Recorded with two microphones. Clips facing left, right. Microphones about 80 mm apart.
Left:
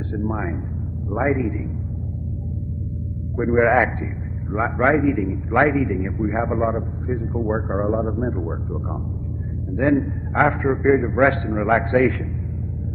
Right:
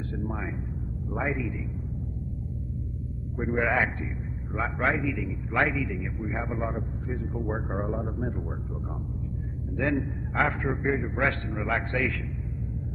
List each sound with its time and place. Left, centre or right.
0.1 s a man's voice: left
3.3 s a man's voice: left
9.8 s a man's voice: left